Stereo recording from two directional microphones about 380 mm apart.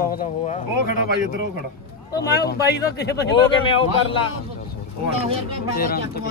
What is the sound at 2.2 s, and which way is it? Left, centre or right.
A man's voice, left.